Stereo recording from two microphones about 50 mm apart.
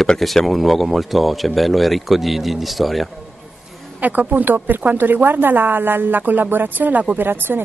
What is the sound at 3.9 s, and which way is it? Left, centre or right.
A woman's voice, right.